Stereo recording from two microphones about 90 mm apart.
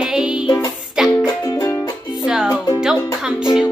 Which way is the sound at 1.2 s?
40° left (ahead or behind).